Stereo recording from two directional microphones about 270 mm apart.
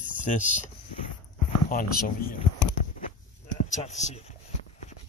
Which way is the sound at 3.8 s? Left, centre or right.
Left.